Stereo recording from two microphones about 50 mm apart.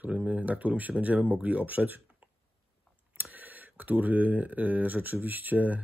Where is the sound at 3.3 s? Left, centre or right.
Right.